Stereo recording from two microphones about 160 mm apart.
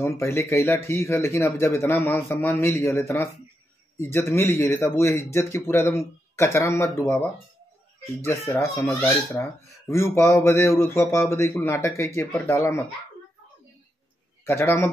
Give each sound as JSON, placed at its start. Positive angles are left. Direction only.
{"t": 0.0, "sound": "speech", "side_deg": 15}
{"t": 14.4, "sound": "speech", "side_deg": 15}